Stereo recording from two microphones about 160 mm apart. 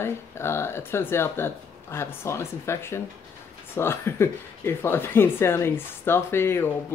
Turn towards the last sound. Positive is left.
turn(degrees=15)  # may be behind; listen again after turning